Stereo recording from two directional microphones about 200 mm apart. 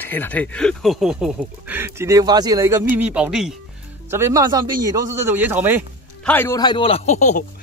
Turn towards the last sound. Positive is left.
turn(degrees=35)  # may be behind; listen again after turning